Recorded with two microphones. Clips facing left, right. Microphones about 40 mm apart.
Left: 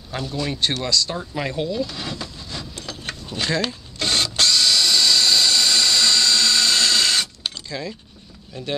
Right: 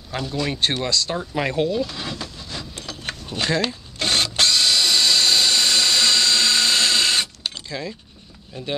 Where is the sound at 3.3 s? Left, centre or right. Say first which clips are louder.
Right 1 dB; right.